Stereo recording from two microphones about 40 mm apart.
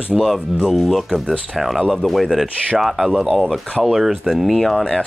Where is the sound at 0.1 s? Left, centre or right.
Centre.